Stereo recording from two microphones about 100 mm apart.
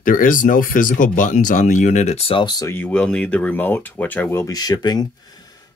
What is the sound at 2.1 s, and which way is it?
Speech, 75° left (ahead or behind).